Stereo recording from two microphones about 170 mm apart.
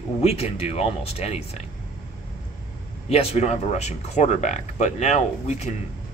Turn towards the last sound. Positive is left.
turn(degrees=40)  # may be behind; listen again after turning